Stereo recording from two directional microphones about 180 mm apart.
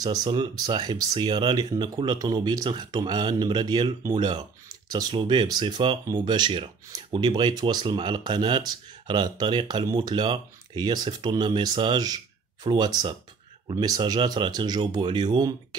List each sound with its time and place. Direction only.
0.0 s speech: 20° right (ahead or behind)